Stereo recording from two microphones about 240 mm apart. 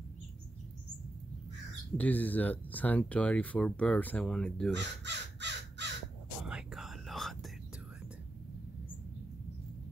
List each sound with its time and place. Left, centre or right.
2.0 s speech: centre
4.7 s crow: right
6.4 s whispering: centre